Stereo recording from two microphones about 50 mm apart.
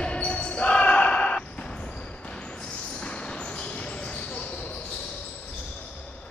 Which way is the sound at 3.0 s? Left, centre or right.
Centre.